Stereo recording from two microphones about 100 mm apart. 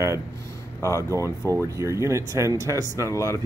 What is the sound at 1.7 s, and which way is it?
Speech, 30° right (ahead or behind).